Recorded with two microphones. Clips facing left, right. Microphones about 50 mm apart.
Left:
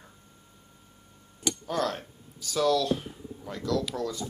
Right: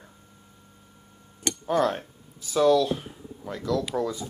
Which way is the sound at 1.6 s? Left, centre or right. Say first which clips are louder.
Right 7 dB; centre.